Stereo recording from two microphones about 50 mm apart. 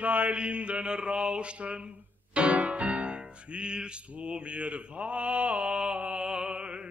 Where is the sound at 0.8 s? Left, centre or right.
Centre.